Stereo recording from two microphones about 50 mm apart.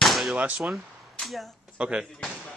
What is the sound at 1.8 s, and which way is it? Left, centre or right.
Speech, right.